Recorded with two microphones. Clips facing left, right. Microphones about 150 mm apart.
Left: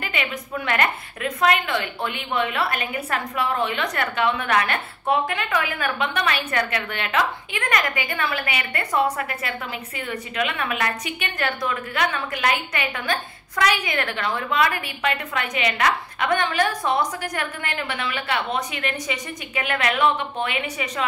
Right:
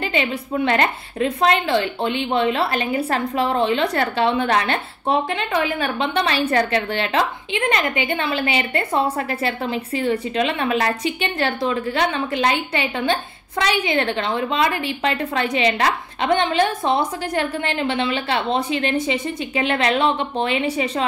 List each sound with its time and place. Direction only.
0.0 s a woman's voice: 30° right (ahead or behind)